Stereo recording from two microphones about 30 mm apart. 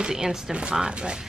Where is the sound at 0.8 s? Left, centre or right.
Right.